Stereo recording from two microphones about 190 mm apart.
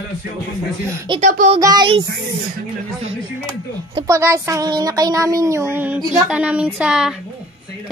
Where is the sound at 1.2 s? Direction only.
45° right (ahead or behind).